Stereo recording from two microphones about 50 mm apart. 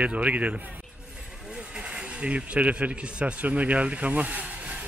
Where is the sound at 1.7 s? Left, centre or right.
Right.